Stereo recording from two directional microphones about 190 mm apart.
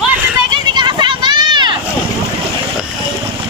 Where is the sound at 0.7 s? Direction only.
25° right (ahead or behind).